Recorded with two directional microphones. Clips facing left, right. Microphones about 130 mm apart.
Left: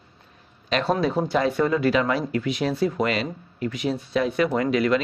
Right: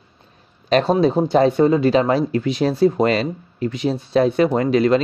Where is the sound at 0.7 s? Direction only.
35° right (ahead or behind).